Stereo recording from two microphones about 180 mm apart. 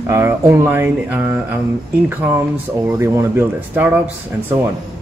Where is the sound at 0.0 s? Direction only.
15° right (ahead or behind).